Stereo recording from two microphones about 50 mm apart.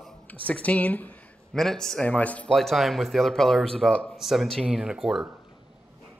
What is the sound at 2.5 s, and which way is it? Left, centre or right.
Speech, centre.